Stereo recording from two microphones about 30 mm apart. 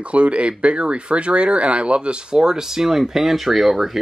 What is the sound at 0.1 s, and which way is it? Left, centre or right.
Speech, right.